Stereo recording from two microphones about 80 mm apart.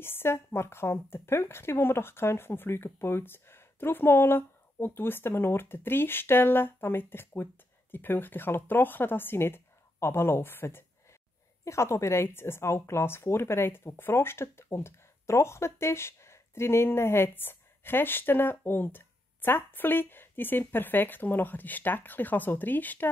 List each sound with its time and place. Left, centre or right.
0.0 s a woman's voice: left